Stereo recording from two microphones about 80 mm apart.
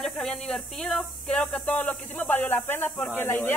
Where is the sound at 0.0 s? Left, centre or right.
Centre.